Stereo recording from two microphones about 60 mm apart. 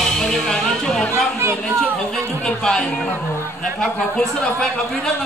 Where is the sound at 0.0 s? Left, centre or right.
Centre.